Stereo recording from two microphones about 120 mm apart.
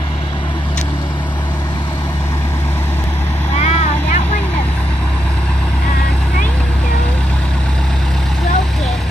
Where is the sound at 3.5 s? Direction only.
70° left (ahead or behind).